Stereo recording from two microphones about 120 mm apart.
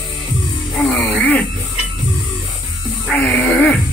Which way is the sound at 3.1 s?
10° left (ahead or behind).